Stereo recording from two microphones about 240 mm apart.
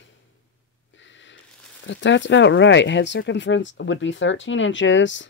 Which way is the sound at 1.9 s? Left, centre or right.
Left.